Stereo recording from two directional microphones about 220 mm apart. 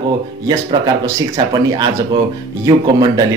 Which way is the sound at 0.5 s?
20° right (ahead or behind).